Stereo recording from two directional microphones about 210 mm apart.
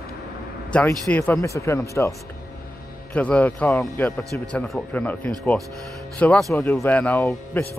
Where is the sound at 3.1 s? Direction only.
5° left (ahead or behind).